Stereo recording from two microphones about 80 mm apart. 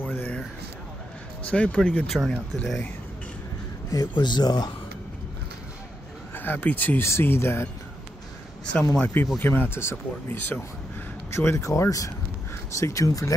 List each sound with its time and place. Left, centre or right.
0.0 s a sound: left
1.5 s speech: centre
2.1 s speech: centre
4.1 s speech: left
6.3 s speech: left
7.1 s speech: left
9.0 s speech: left